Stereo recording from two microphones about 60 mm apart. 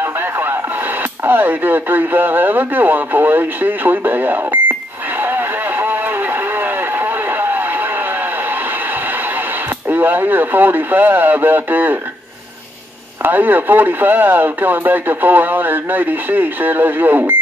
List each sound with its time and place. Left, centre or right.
0.0 s radio: right
1.2 s speech: right
5.2 s a sound: right
9.8 s speech: right
13.2 s speech: right